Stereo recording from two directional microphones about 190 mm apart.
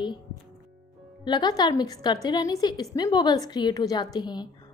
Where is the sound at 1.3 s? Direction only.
20° left (ahead or behind).